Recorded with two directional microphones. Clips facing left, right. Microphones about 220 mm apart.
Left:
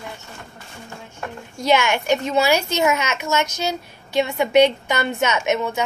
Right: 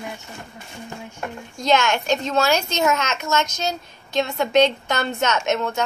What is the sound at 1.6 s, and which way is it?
A child's voice, 10° left (ahead or behind).